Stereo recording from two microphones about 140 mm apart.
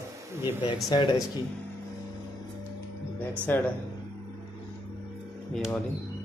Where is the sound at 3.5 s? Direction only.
15° left (ahead or behind).